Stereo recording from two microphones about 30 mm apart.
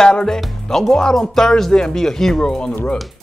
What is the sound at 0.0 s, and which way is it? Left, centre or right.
Speech, left.